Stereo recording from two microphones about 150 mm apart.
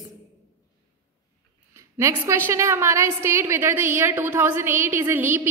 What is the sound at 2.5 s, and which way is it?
A woman's voice, 20° right (ahead or behind).